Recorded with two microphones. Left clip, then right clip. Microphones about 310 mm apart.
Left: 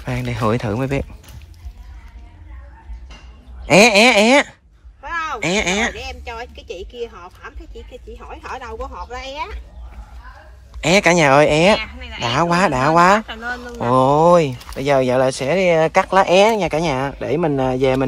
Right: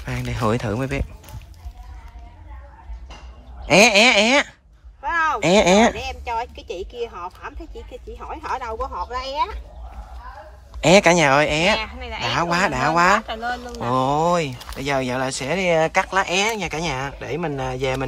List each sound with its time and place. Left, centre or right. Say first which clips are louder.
0.0 s speech: left 3 dB; centre
3.6 s speech: left 3 dB; centre
5.0 s speech: right 3 dB; centre
10.8 s speech: even; centre
11.8 s speech: even; right
12.2 s speech: left 4 dB; centre